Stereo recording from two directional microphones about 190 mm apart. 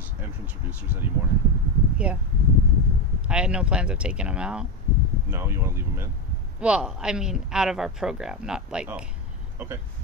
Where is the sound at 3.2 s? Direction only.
5° right (ahead or behind).